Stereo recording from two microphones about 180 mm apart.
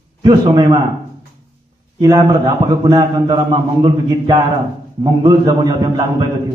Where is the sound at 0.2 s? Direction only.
25° right (ahead or behind).